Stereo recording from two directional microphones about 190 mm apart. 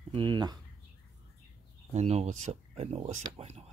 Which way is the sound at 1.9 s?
35° right (ahead or behind).